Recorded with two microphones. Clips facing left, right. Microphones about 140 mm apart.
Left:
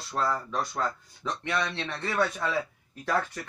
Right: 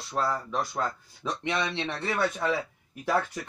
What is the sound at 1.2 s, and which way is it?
Speech, 15° right (ahead or behind).